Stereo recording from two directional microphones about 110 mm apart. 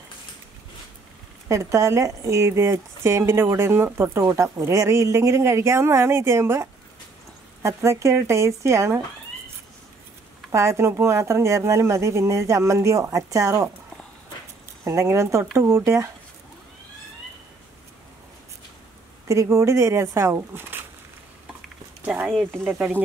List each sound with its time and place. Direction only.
1.5 s speech: 25° right (ahead or behind)
10.5 s speech: 25° right (ahead or behind)
14.9 s speech: 25° right (ahead or behind)
19.2 s speech: 30° right (ahead or behind)
21.5 s a sound: 15° right (ahead or behind)
22.7 s speech: 10° right (ahead or behind)